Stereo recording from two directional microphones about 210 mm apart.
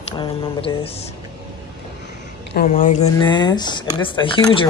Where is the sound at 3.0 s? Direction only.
20° left (ahead or behind).